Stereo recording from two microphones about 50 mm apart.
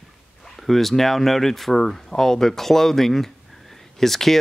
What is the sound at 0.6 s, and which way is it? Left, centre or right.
Speech, centre.